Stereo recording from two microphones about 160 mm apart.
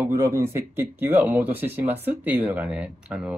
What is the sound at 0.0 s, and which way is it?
Speech, 20° right (ahead or behind).